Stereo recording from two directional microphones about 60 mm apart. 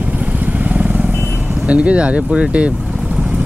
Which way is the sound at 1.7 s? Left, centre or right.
Right.